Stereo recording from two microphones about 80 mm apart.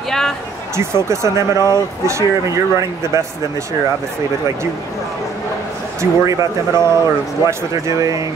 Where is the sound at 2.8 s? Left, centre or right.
Right.